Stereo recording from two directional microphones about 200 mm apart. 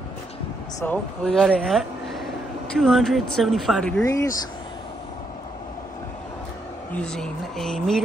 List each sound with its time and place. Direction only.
0.7 s speech: 5° left (ahead or behind)
4.0 s speech: 15° left (ahead or behind)
6.9 s speech: 5° left (ahead or behind)